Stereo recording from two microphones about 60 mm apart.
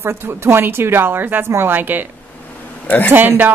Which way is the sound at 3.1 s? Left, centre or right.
Right.